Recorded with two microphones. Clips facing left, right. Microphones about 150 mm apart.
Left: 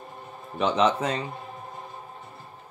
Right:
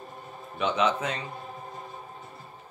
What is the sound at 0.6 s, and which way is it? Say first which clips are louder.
Speech: left 3 dB; 35° left (ahead or behind).